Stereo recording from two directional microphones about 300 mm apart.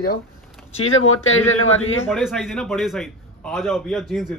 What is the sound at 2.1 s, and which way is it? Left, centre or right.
Speech, centre.